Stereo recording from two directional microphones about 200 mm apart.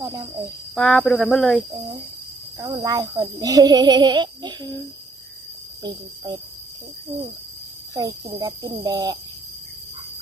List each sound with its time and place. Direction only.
0.7 s speech: centre (ahead or behind)
2.6 s a child's voice: 20° right (ahead or behind)
5.8 s a child's voice: 20° right (ahead or behind)
7.9 s a child's voice: 20° right (ahead or behind)